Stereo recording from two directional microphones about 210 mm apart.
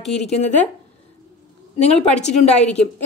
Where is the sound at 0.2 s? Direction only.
30° left (ahead or behind).